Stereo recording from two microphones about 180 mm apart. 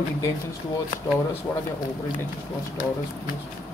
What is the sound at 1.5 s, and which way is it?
Speech, 15° left (ahead or behind).